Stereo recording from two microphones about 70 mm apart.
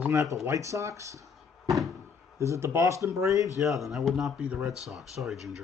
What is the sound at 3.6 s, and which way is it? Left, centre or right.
Speech, centre.